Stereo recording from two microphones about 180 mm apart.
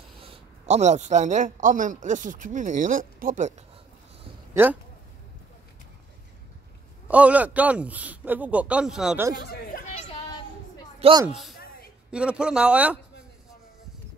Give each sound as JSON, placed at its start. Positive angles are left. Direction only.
{"t": 0.2, "sound": "a man's voice", "side_deg": -35}
{"t": 7.1, "sound": "a man's voice", "side_deg": -10}
{"t": 11.0, "sound": "speech", "side_deg": -30}
{"t": 11.2, "sound": "a man's voice", "side_deg": 0}
{"t": 11.5, "sound": "a sound", "side_deg": 60}
{"t": 12.1, "sound": "a man's voice", "side_deg": -5}